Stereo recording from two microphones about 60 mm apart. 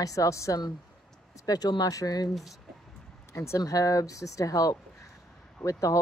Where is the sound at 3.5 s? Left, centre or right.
Left.